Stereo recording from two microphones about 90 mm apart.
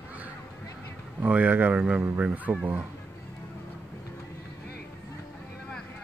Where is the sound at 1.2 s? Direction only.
15° right (ahead or behind).